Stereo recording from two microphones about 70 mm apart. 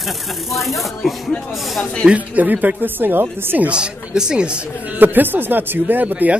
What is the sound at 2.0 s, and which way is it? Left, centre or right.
Speech, right.